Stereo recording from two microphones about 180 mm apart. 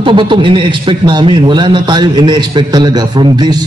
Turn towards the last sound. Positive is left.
turn(degrees=-25)  # may be behind; listen again after turning